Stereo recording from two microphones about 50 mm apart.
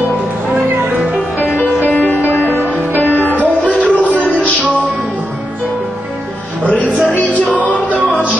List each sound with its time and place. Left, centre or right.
1.6 s music: left
3.8 s a sound: left
4.2 s music: left
6.8 s music: right
7.5 s music: left